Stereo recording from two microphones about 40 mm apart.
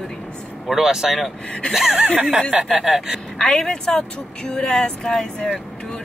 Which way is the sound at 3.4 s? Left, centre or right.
Centre.